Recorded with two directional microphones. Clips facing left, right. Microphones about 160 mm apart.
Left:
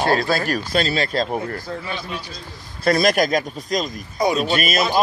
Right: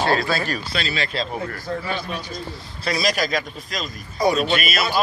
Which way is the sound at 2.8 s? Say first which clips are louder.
Left 6 dB; 50° left (ahead or behind).